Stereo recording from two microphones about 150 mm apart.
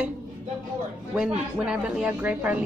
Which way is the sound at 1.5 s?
5° right (ahead or behind).